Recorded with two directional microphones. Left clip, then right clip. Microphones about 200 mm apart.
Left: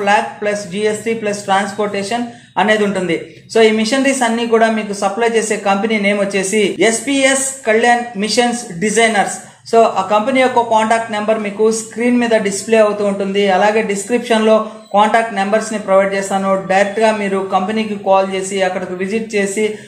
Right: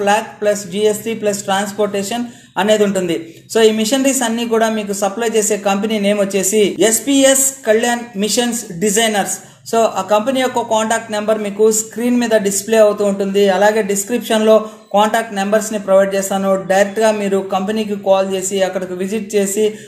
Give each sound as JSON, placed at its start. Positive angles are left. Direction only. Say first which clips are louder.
{"t": 0.0, "sound": "speech", "louder": "left 1 dB", "side_deg": -40}